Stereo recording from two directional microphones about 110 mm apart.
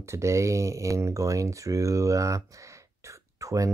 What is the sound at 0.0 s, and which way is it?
Speech, 25° right (ahead or behind).